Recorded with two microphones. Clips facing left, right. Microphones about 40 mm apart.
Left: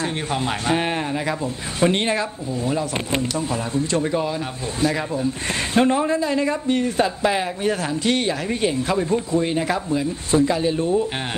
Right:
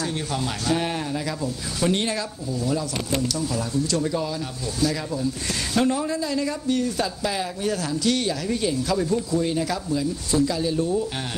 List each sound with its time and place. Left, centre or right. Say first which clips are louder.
0.0 s a man's voice: left 3 dB; left